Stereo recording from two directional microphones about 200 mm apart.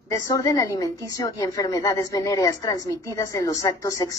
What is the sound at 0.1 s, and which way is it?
A woman's voice, 15° left (ahead or behind).